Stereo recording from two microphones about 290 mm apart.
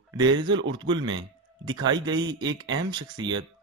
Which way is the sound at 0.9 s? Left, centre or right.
Centre.